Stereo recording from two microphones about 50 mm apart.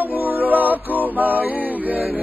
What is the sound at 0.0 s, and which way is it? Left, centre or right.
Music, right.